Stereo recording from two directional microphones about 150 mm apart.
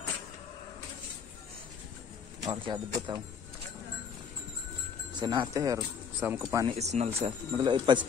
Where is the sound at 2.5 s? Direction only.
25° right (ahead or behind).